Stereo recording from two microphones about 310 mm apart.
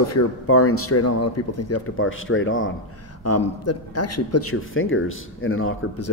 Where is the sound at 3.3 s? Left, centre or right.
Left.